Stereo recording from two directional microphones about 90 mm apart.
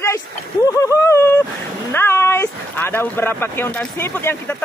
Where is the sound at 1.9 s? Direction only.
25° left (ahead or behind).